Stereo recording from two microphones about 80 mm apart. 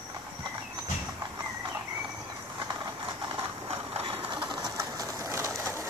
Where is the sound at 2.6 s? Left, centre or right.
Right.